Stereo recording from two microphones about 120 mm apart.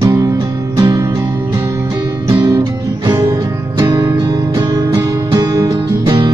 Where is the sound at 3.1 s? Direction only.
30° right (ahead or behind).